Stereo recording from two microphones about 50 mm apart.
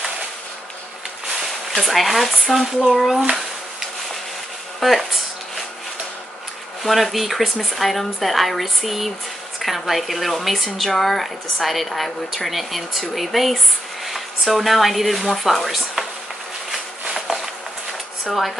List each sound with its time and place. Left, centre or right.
1.8 s speech: centre
2.9 s a sound: centre
4.7 s speech: centre
6.8 s speech: centre
17.3 s a sound: centre
18.2 s speech: centre